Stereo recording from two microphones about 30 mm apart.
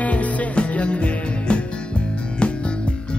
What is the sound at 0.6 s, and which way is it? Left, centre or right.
Music, left.